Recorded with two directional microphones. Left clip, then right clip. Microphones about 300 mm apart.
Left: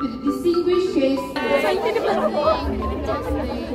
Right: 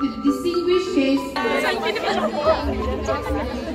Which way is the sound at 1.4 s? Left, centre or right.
Centre.